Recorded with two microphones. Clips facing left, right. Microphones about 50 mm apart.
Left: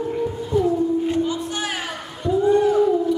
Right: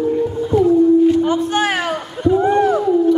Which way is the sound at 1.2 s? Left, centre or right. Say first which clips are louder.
Right 8 dB; right.